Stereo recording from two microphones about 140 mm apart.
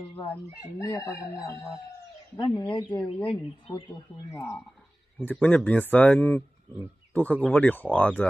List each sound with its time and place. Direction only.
0.2 s speech: 10° left (ahead or behind)
0.8 s speech: 25° left (ahead or behind)
2.4 s speech: 35° left (ahead or behind)
2.8 s speech: 10° left (ahead or behind)
3.6 s speech: 35° left (ahead or behind)
5.2 s speech: 10° left (ahead or behind)